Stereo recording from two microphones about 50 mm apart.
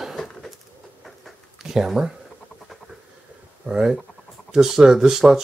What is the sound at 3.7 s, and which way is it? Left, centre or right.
Speech, centre.